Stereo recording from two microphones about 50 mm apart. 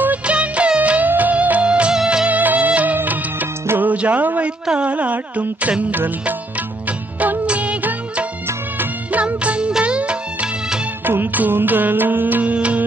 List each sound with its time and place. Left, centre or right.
0.0 s music of bollywood: right
2.2 s music: right
3.0 s music of bollywood: right
3.8 s music: right
7.4 s music: right
11.1 s music: right